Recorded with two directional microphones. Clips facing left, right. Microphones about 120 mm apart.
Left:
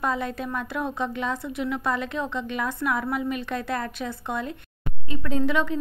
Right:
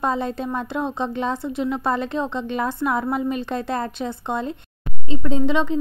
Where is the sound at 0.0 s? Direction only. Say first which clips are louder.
Right 4 dB; 30° right (ahead or behind).